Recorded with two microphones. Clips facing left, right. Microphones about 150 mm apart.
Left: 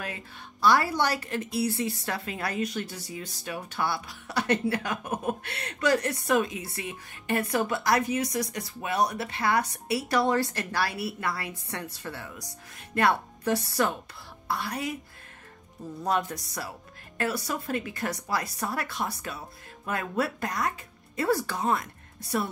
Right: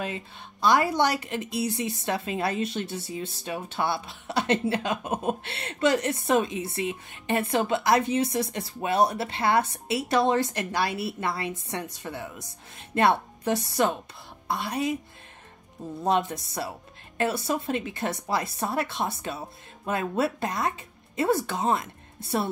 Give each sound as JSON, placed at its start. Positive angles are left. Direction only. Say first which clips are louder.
{"t": 0.0, "sound": "a woman's voice", "louder": "right 5 dB", "side_deg": -20}
{"t": 16.0, "sound": "a woman's voice", "louder": "right 3 dB", "side_deg": -20}